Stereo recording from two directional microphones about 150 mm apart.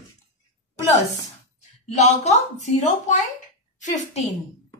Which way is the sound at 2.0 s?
50° left (ahead or behind).